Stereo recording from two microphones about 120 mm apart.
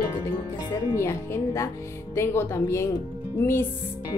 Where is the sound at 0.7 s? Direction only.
25° left (ahead or behind).